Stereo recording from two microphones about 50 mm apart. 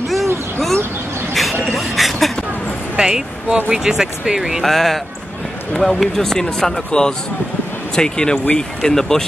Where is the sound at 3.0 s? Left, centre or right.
Centre.